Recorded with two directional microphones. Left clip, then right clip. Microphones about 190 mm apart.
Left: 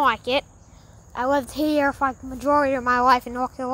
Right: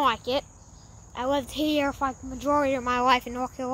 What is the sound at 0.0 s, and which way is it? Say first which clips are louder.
Speech: left 4 dB; 10° left (ahead or behind).